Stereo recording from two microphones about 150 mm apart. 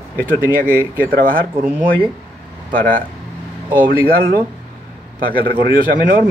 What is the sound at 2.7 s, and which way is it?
Speech, 65° right (ahead or behind).